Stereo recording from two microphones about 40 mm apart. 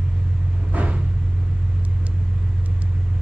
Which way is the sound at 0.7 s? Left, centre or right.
Right.